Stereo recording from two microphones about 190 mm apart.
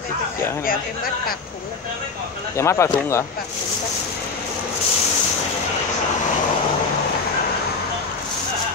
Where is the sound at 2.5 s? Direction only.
15° left (ahead or behind).